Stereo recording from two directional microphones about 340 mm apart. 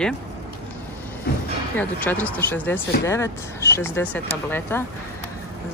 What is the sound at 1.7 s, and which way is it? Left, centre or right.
Speech, centre.